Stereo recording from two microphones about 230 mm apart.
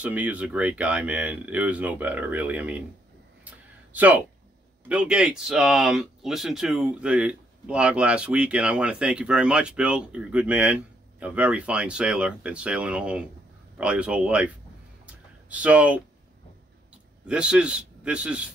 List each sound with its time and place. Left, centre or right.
0.0 s speech: centre
3.4 s a sound: centre
4.8 s speech: centre
17.3 s speech: centre